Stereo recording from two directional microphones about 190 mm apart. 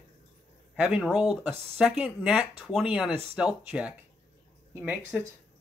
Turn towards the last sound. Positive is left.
turn(degrees=-10)  # may be behind; listen again after turning